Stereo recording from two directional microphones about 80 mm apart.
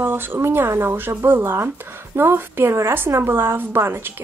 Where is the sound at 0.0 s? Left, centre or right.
Right.